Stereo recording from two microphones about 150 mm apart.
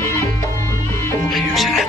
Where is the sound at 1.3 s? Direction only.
Centre (ahead or behind).